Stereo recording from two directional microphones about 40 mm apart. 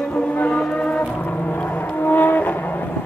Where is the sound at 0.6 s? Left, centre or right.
Left.